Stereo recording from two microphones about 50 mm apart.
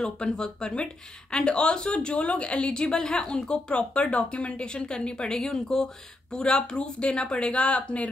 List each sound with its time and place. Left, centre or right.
0.0 s a woman's voice: centre